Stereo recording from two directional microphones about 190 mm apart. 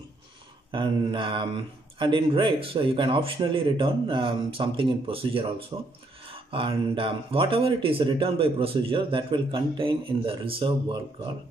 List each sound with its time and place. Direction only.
0.7 s speech: 25° right (ahead or behind)